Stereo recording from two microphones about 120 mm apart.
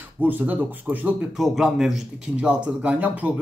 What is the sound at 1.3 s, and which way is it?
Speech, centre (ahead or behind).